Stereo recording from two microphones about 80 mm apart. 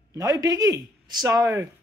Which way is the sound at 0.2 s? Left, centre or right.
Right.